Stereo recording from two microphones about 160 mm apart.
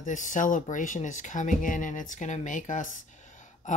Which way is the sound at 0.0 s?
50° left (ahead or behind).